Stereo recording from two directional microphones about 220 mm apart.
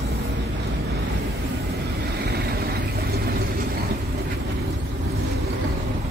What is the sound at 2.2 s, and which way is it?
Vehicle, 45° right (ahead or behind).